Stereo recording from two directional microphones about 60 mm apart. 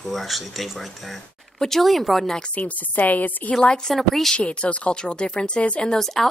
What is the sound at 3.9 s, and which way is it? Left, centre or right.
Speech, centre.